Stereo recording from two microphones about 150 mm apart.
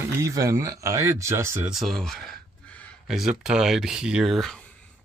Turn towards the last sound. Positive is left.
turn(degrees=0)  # may be behind; listen again after turning